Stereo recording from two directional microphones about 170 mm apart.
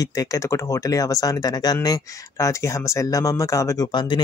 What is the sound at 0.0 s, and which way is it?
Speech, 20° left (ahead or behind).